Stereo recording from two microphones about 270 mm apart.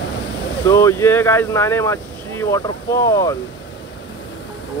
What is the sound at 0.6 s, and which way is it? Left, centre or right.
Speech, centre.